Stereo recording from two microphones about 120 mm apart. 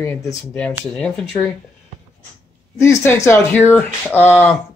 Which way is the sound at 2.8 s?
20° left (ahead or behind).